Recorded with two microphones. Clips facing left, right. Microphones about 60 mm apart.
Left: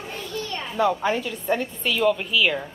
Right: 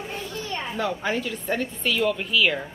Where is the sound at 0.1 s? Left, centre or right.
Centre.